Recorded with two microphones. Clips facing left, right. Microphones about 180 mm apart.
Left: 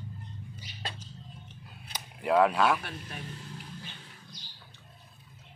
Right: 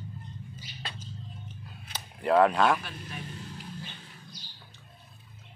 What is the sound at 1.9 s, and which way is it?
Speech, 5° left (ahead or behind).